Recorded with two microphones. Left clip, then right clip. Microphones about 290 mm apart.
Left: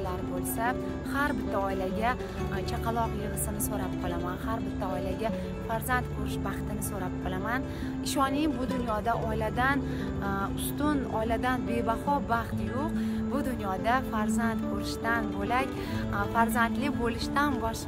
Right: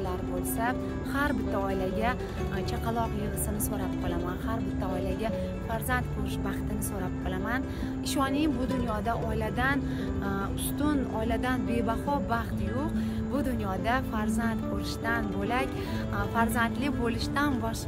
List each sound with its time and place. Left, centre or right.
0.6 s speech: centre
8.2 s speech: centre
10.8 s speech: centre